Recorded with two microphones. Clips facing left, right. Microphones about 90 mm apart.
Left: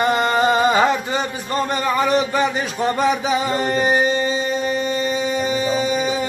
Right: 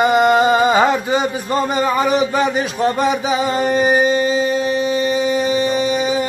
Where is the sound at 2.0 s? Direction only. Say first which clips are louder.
Right 2 dB; 5° right (ahead or behind).